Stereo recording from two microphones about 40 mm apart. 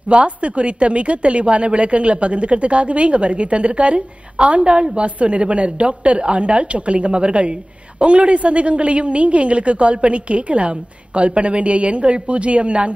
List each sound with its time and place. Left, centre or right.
0.1 s a woman's voice: right